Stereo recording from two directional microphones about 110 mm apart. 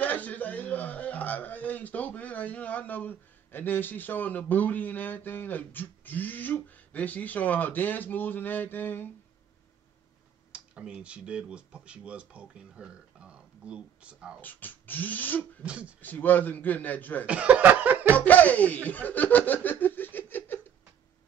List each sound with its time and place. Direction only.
0.0 s a man's voice: 15° left (ahead or behind)
10.5 s speech: 10° right (ahead or behind)
14.4 s a man's voice: 15° left (ahead or behind)
15.6 s speech: 10° right (ahead or behind)
16.0 s a man's voice: 15° left (ahead or behind)
17.3 s speech: 10° right (ahead or behind)
18.1 s laughter: 15° left (ahead or behind)